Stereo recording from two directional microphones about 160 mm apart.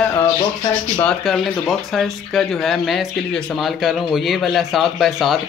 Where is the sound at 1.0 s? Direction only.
Centre (ahead or behind).